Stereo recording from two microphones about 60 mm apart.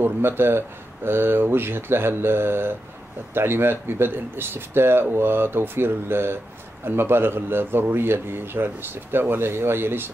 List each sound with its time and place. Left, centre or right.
0.0 s speech: right